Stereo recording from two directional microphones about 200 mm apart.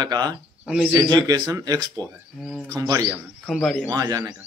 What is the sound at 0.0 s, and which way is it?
A man's voice, 20° right (ahead or behind).